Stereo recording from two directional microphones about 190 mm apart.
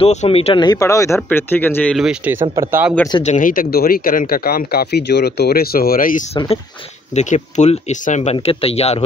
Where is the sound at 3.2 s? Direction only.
40° left (ahead or behind).